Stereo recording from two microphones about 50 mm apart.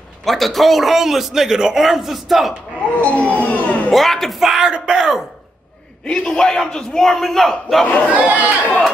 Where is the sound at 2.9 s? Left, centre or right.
Left.